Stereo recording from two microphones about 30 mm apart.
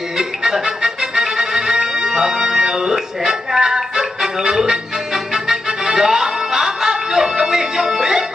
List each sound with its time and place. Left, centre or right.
0.2 s music: centre